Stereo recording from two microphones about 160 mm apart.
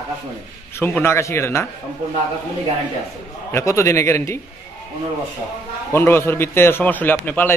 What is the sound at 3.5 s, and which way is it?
Speech, 15° left (ahead or behind).